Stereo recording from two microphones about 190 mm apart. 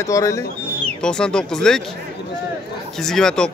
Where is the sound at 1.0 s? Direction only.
5° left (ahead or behind).